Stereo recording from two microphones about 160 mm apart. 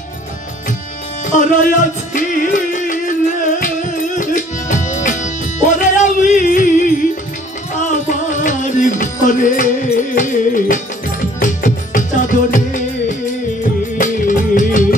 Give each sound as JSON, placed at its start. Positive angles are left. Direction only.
{"t": 1.2, "sound": "music", "side_deg": 50}
{"t": 13.9, "sound": "music", "side_deg": 55}